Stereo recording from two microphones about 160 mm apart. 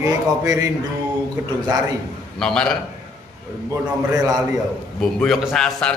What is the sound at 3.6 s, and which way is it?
Speech, 20° right (ahead or behind).